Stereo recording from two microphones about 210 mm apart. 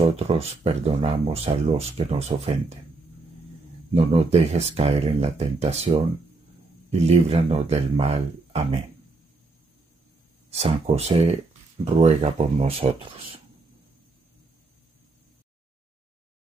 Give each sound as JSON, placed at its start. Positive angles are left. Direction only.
{"t": 0.7, "sound": "speech", "side_deg": -30}
{"t": 3.9, "sound": "speech", "side_deg": -30}
{"t": 10.5, "sound": "speech", "side_deg": -30}